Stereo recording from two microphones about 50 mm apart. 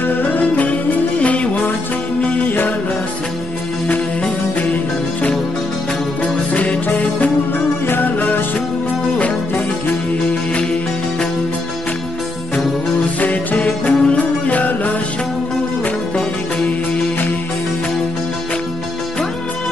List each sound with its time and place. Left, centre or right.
0.1 s music: left
6.2 s music: left
13.2 s music: left